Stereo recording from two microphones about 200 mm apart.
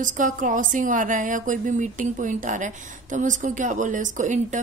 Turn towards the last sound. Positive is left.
turn(degrees=-35)  # may be behind; listen again after turning